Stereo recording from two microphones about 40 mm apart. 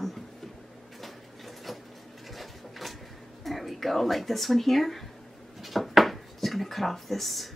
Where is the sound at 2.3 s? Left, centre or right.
Centre.